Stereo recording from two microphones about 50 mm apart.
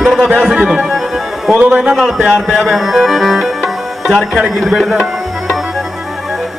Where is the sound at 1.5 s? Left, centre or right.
Right.